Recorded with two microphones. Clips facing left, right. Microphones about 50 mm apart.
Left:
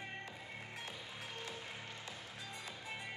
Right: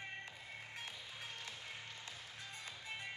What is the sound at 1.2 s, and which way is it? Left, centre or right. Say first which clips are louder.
Music: left 4 dB; centre.